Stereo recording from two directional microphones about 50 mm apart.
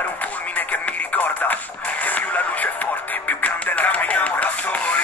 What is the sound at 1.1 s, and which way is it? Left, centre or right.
Radio, left.